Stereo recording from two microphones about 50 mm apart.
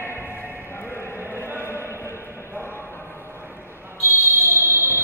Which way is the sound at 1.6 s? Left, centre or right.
Left.